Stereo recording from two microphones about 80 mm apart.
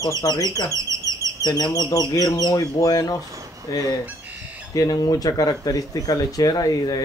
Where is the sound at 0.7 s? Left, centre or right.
Right.